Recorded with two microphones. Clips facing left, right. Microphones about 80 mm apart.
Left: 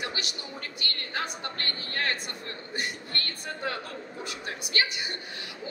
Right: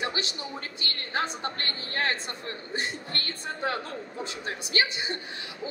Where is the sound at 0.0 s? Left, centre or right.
Right.